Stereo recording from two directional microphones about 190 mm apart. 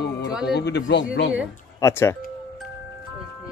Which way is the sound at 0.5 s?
60° left (ahead or behind).